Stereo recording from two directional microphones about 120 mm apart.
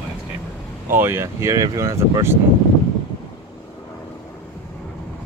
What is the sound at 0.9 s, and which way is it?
Speech, 20° right (ahead or behind).